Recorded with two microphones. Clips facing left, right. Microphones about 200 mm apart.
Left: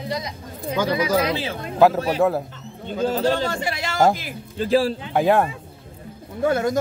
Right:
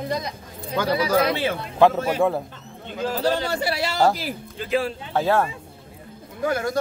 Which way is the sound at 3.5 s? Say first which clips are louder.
Right 2 dB; 40° right (ahead or behind).